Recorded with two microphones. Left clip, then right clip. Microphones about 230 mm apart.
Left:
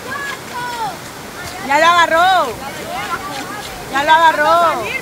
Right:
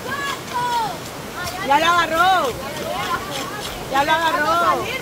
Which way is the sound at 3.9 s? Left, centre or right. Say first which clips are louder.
Left 7 dB; left.